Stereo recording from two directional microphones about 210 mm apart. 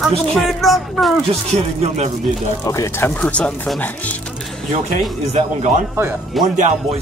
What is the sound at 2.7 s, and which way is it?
Speech, 15° left (ahead or behind).